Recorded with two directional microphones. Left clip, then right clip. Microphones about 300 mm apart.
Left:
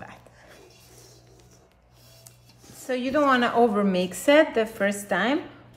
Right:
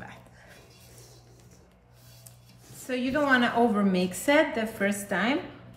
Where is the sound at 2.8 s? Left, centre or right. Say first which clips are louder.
Left 4 dB; left.